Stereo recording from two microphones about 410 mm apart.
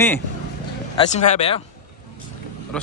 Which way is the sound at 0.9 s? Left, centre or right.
Centre.